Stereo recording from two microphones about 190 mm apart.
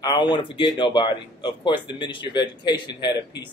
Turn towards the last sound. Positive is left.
turn(degrees=25)  # may be behind; listen again after turning